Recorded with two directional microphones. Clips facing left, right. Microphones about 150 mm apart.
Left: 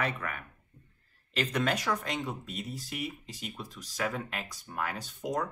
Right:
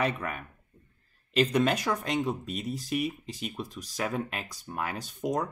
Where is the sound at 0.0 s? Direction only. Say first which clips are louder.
Right 4 dB; 20° right (ahead or behind).